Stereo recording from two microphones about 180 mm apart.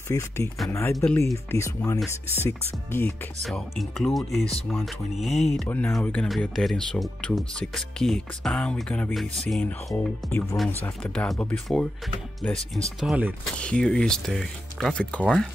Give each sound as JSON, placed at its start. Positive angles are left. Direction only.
{"t": 0.1, "sound": "speech", "side_deg": 20}
{"t": 3.4, "sound": "speech", "side_deg": 0}
{"t": 13.6, "sound": "speech", "side_deg": 5}